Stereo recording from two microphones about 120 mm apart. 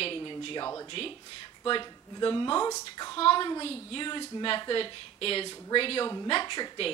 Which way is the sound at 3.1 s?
45° left (ahead or behind).